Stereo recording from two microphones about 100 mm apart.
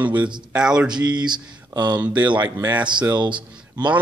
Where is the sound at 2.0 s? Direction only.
15° right (ahead or behind).